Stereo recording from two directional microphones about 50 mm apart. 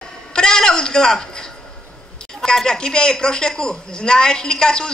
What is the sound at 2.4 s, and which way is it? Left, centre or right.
A woman's voice, centre.